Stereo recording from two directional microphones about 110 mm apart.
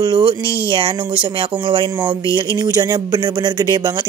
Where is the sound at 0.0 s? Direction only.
45° right (ahead or behind).